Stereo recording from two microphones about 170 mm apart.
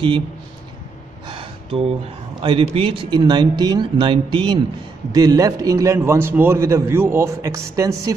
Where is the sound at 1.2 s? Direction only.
30° right (ahead or behind).